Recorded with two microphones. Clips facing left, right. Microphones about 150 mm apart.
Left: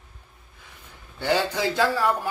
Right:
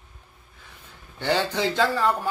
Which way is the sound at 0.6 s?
15° left (ahead or behind).